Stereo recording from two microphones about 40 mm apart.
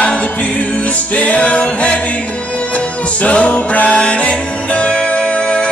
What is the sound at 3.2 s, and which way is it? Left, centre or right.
Music, left.